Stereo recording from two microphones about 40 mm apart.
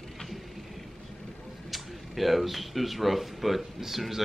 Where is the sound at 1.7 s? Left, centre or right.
Centre.